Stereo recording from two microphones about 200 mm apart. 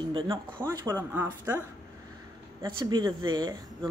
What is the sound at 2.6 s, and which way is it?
Speech, 20° right (ahead or behind).